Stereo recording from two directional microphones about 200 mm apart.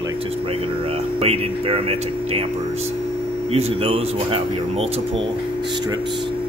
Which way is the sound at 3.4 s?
30° right (ahead or behind).